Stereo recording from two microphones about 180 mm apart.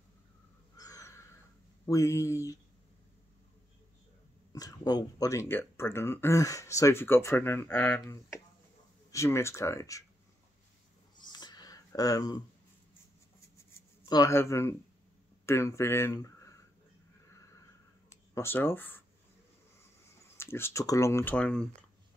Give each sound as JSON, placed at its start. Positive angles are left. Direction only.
{"t": 0.7, "sound": "gasp", "side_deg": 20}
{"t": 1.9, "sound": "speech", "side_deg": 15}
{"t": 4.5, "sound": "speech", "side_deg": 20}
{"t": 11.1, "sound": "a sound", "side_deg": 25}
{"t": 14.0, "sound": "speech", "side_deg": 20}
{"t": 18.3, "sound": "speech", "side_deg": 15}
{"t": 20.3, "sound": "speech", "side_deg": 15}